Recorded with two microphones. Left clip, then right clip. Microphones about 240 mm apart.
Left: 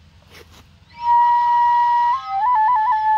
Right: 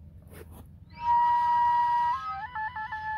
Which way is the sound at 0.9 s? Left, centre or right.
Centre.